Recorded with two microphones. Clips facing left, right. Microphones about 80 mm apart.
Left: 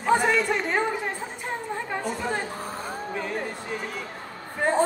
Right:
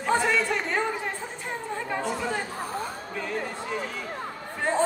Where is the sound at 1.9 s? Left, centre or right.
Centre.